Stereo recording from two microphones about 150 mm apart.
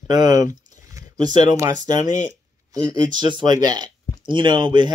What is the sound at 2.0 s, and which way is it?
Speech, 55° left (ahead or behind).